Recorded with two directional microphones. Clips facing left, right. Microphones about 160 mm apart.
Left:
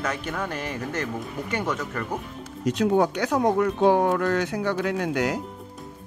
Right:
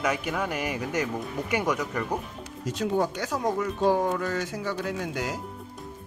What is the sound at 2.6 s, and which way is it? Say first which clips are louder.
Speech: left 5 dB; 70° left (ahead or behind).